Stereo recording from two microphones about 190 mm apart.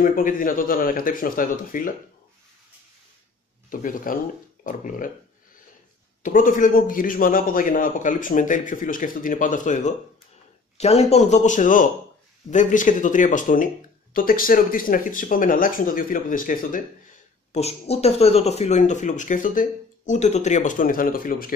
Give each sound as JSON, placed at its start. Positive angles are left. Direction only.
{"t": 0.0, "sound": "a man's voice", "side_deg": 45}
{"t": 3.7, "sound": "a man's voice", "side_deg": 45}
{"t": 6.2, "sound": "a man's voice", "side_deg": 45}
{"t": 17.5, "sound": "speech", "side_deg": 35}